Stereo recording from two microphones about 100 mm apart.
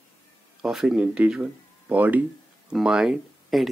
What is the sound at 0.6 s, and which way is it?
Speech, 5° right (ahead or behind).